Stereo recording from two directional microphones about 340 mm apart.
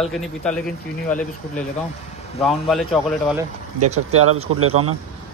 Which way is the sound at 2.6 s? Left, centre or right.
Centre.